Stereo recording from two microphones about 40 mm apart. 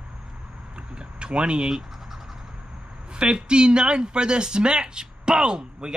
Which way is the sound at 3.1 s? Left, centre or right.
Right.